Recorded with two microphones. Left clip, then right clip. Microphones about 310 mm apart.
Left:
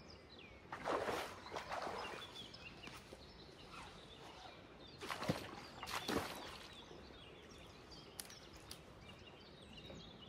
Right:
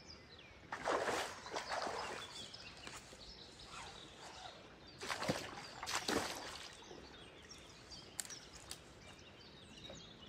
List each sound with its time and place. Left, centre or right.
0.7 s splash: right
5.0 s boat: right